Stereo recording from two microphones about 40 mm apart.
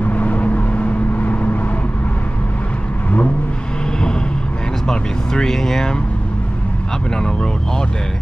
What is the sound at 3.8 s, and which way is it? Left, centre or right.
Vehicle, left.